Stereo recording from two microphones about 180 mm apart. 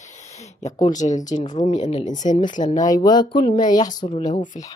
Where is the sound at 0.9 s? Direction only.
40° left (ahead or behind).